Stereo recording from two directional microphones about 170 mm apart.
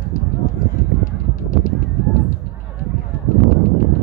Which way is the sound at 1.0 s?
55° left (ahead or behind).